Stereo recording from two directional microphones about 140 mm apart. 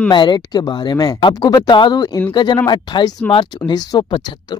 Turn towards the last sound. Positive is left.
turn(degrees=35)  # may be behind; listen again after turning